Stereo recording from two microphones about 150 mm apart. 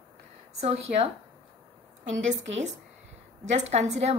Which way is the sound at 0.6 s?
50° right (ahead or behind).